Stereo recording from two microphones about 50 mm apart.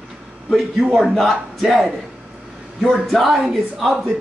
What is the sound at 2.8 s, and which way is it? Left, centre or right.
Speech, centre.